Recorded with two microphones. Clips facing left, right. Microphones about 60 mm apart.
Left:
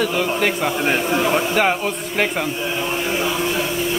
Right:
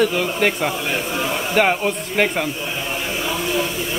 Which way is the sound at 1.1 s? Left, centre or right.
Left.